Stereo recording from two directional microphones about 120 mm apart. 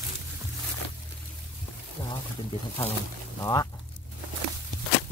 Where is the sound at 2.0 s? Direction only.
30° left (ahead or behind).